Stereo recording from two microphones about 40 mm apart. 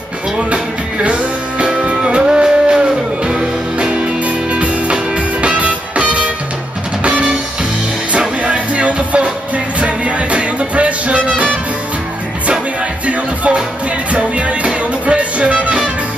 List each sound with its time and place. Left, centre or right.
1.0 s music: right
3.7 s music: right
8.4 s music: right
13.0 s music: right